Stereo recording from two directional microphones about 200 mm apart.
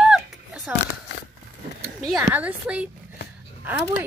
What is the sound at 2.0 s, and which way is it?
A woman's voice, centre (ahead or behind).